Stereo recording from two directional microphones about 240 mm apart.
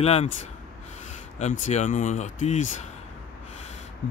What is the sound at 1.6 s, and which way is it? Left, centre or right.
Speech, left.